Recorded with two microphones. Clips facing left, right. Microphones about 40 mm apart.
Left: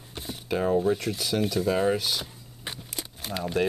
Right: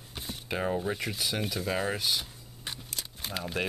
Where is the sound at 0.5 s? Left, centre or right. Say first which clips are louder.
Left 7 dB; centre.